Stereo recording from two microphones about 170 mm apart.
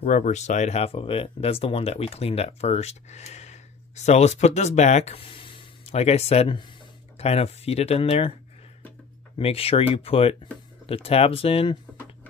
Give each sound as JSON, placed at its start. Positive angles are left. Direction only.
{"t": 0.0, "sound": "speech", "side_deg": 50}
{"t": 9.4, "sound": "speech", "side_deg": 35}